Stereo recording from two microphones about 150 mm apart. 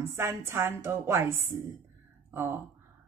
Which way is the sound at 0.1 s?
15° right (ahead or behind).